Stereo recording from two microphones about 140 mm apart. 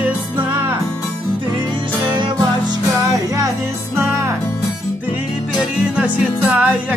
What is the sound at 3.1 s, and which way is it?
Music, 25° right (ahead or behind).